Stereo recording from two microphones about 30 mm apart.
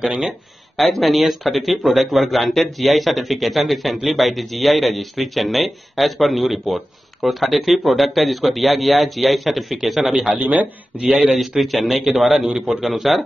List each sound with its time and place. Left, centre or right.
0.7 s a man's voice: centre
11.1 s speech: right
11.3 s a man's voice: centre